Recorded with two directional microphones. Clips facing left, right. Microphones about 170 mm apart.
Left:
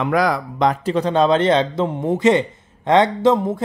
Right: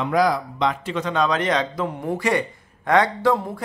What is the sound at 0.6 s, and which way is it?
A man's voice, 40° left (ahead or behind).